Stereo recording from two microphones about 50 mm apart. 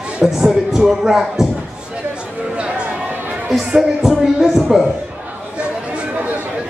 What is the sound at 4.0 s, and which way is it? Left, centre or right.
Speech, centre.